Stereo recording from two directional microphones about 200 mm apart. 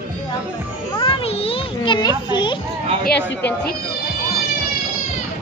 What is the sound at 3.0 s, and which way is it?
Speech, 55° left (ahead or behind).